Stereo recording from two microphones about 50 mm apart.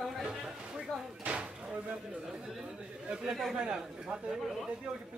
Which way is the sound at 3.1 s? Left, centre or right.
Centre.